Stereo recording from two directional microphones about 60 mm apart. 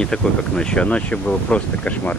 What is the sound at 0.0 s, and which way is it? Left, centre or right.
Speech, centre.